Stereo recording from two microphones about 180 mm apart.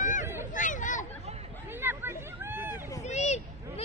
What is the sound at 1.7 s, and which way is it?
Hubbub, 10° right (ahead or behind).